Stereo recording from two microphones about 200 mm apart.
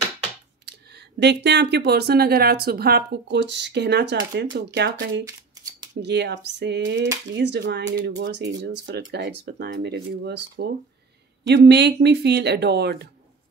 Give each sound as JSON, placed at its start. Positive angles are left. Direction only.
{"t": 0.7, "sound": "speech", "side_deg": -55}
{"t": 5.2, "sound": "shuffling cards", "side_deg": -20}
{"t": 6.0, "sound": "speech", "side_deg": -60}